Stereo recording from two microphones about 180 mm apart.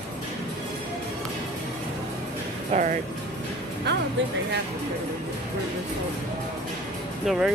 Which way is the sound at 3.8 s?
70° right (ahead or behind).